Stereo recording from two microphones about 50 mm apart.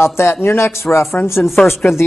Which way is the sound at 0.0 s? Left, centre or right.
Left.